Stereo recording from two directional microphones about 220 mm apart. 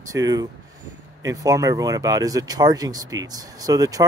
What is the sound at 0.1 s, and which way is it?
Speech, 15° right (ahead or behind).